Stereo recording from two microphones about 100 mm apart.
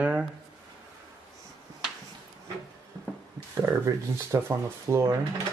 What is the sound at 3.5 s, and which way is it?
Speech, 30° right (ahead or behind).